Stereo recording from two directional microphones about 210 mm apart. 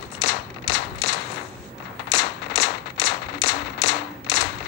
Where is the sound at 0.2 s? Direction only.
55° left (ahead or behind).